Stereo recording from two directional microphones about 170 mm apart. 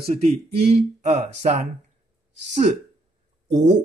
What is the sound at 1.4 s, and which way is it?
Speech, 55° right (ahead or behind).